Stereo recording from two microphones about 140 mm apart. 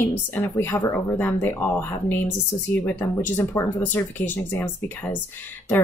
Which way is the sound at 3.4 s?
15° left (ahead or behind).